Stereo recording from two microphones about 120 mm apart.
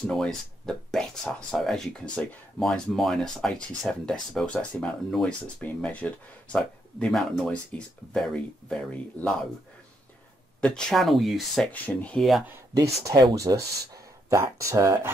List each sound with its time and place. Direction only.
0.0 s speech: 5° left (ahead or behind)
10.6 s speech: 5° left (ahead or behind)
12.7 s speech: 30° right (ahead or behind)